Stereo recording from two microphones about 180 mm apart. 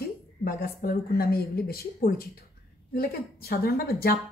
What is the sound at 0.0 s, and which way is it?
A woman's voice, 55° left (ahead or behind).